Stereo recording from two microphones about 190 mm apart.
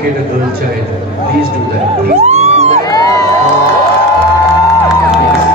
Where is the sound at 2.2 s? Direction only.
35° right (ahead or behind).